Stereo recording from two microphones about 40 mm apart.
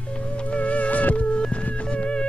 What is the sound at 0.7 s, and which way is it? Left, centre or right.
Music, left.